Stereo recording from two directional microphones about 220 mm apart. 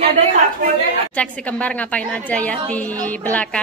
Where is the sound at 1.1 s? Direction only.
5° left (ahead or behind).